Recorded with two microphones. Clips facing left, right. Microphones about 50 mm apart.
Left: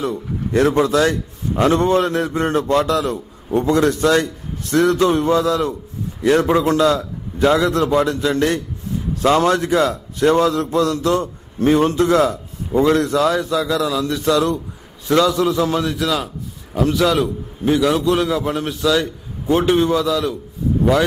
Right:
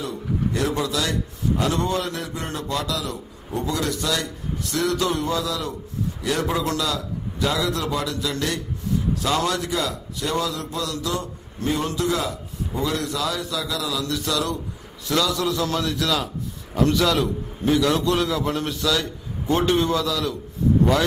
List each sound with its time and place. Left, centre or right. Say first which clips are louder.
0.0 s a man's voice: left 3 dB; left; by 20.3 s centre